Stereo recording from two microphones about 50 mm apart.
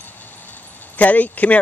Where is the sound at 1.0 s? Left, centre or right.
Left.